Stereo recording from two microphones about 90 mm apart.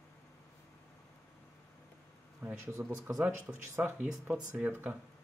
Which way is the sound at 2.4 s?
20° right (ahead or behind).